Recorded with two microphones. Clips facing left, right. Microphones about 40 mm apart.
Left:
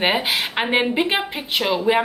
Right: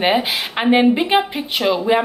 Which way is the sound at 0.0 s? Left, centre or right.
Centre.